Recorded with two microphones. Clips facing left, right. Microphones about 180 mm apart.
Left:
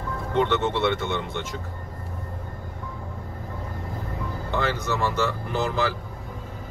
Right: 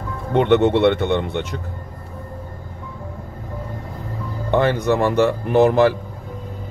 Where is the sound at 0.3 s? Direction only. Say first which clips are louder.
Right 8 dB; 60° right (ahead or behind).